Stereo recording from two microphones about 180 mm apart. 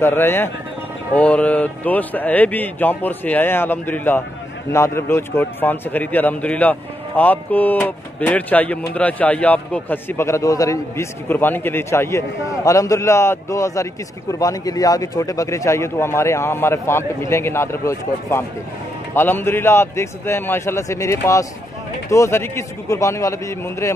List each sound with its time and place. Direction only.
0.0 s a man's voice: 10° left (ahead or behind)